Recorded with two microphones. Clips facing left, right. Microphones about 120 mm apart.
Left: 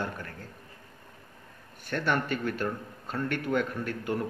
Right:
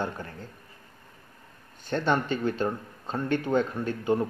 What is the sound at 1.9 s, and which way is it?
Speech, 25° right (ahead or behind).